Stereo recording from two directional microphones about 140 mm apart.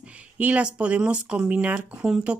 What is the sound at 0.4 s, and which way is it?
Speech, 10° right (ahead or behind).